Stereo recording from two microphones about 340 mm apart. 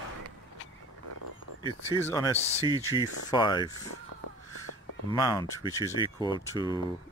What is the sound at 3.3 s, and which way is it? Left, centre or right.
Speech, centre.